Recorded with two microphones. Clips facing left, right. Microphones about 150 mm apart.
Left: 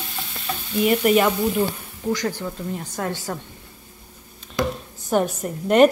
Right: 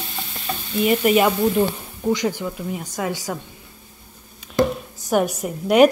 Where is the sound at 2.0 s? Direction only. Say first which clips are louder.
Right 3 dB; 20° right (ahead or behind).